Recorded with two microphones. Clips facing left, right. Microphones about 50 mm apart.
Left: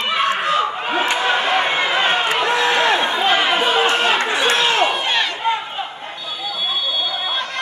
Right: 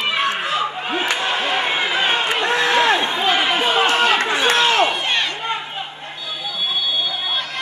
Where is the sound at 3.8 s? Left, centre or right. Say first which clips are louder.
Even; left.